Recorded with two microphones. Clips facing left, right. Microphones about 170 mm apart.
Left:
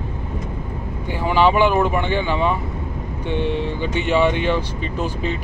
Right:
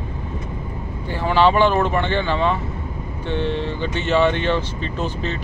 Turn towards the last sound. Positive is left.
turn(degrees=10)  # may be behind; listen again after turning